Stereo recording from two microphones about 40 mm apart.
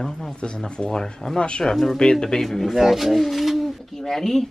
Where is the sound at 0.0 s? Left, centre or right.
Centre.